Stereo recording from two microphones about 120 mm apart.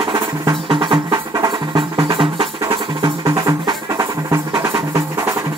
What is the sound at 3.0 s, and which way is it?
Music, 30° right (ahead or behind).